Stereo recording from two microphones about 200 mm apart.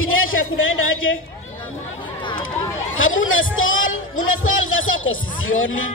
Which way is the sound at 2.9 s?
85° left.